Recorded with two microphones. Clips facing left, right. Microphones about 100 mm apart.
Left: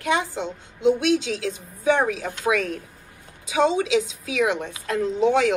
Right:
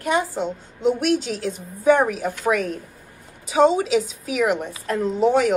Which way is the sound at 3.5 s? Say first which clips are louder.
Right 3 dB; 45° right (ahead or behind).